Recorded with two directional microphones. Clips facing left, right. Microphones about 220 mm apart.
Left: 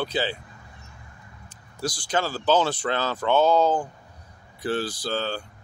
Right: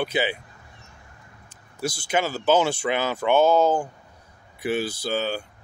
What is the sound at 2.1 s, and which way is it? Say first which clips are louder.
Speech: right 2 dB; 10° right (ahead or behind).